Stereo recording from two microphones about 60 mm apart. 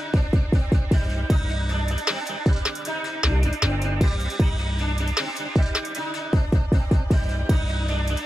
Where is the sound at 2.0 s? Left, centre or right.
Centre.